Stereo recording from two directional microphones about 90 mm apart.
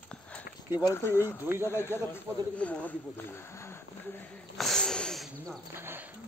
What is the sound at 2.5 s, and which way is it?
Speech, 15° left (ahead or behind).